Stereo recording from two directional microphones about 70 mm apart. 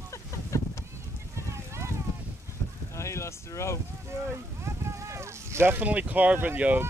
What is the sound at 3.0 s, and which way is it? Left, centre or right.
Boat, left.